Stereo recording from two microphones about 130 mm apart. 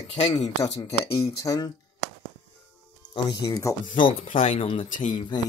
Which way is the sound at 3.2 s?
25° left (ahead or behind).